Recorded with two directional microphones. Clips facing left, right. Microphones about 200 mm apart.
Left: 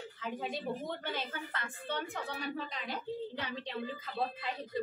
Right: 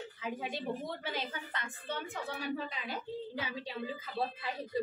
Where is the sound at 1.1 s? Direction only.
15° right (ahead or behind).